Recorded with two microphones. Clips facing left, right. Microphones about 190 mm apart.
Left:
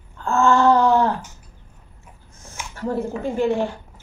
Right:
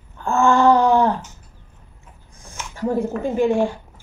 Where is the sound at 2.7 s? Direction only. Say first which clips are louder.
Right 3 dB; 15° right (ahead or behind).